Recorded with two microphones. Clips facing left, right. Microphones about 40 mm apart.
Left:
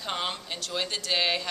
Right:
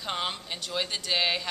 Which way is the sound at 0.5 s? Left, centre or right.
Centre.